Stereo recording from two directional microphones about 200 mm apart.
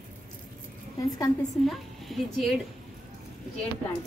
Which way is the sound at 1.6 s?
Centre (ahead or behind).